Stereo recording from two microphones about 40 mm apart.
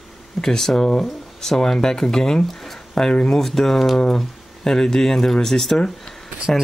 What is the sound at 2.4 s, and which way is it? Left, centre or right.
Speech, centre.